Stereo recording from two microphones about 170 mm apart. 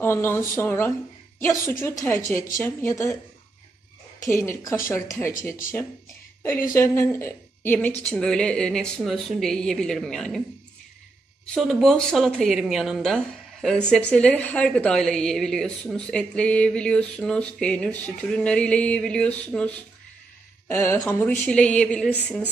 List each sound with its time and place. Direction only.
0.0 s a woman's voice: 15° left (ahead or behind)
4.3 s a woman's voice: 15° left (ahead or behind)
11.4 s a woman's voice: 5° left (ahead or behind)